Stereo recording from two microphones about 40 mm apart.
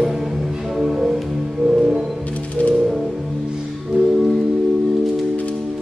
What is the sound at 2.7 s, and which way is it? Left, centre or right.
Music, centre.